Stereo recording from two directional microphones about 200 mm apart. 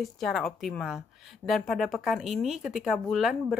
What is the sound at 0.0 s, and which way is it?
Speech, centre (ahead or behind).